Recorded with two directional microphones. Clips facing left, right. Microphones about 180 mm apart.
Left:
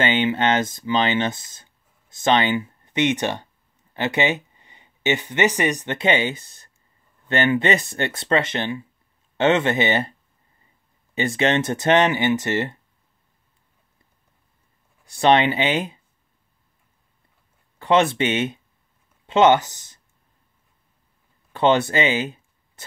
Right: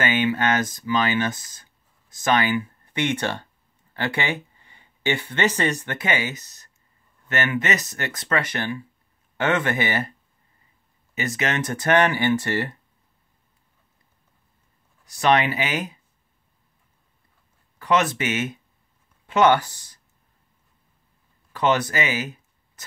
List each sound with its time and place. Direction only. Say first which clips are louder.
0.0 s speech: left 2 dB; 25° left (ahead or behind)
11.1 s speech: left 5 dB; 30° left (ahead or behind)
15.0 s speech: left 3 dB; 25° left (ahead or behind)
17.7 s speech: left 4 dB; 25° left (ahead or behind)
21.5 s a sound: left 3 dB; 25° left (ahead or behind)